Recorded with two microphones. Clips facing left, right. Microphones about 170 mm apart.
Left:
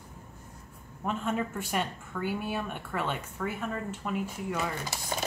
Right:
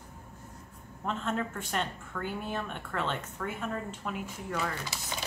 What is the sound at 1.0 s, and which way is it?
A woman's voice, 10° left (ahead or behind).